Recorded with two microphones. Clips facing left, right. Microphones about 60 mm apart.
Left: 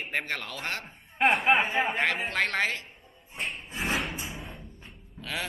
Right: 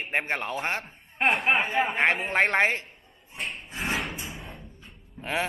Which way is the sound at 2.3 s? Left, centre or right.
Right.